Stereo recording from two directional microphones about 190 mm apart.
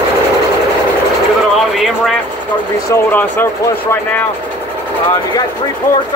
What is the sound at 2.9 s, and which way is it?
Speech, 10° left (ahead or behind).